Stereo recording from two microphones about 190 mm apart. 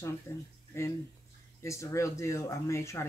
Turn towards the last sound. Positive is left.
turn(degrees=15)  # may be behind; listen again after turning